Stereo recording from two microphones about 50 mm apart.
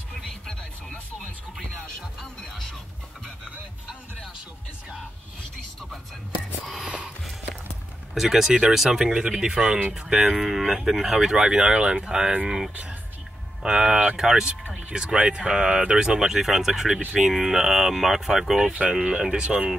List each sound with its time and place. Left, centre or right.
6.6 s a sound: centre
8.1 s speech: centre
12.4 s a sound: centre
13.6 s speech: centre
18.7 s speech: right
18.9 s speech: centre